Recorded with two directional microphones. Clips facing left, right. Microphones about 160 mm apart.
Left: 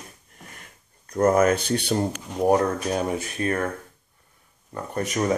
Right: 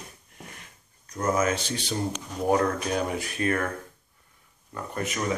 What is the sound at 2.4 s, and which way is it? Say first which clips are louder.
Speech: left 4 dB; 35° left (ahead or behind).